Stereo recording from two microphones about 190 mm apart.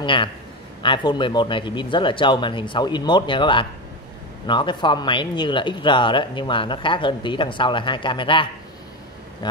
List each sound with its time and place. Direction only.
0.0 s a man's voice: 25° left (ahead or behind)